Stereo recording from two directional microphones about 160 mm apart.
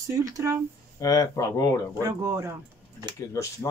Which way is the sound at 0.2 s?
15° right (ahead or behind).